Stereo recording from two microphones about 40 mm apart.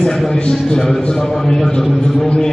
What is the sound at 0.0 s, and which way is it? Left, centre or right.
Speech, centre.